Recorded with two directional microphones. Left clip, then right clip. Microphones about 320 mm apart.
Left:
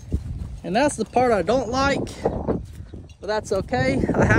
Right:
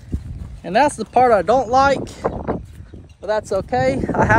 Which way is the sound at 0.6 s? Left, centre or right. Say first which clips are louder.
Right 5 dB; centre.